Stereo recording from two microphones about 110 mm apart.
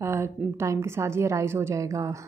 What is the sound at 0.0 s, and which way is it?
A woman's voice, 25° right (ahead or behind).